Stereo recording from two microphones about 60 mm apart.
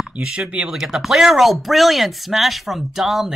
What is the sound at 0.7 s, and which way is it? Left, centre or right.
Speech, centre.